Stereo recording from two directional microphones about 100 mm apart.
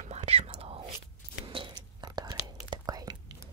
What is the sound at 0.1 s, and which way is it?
Whispering, 90° right.